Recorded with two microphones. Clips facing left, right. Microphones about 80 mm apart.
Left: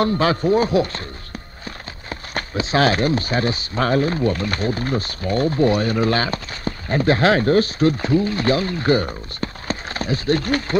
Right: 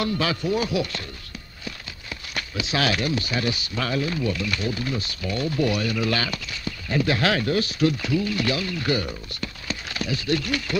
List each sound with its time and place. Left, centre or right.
0.0 s speech: left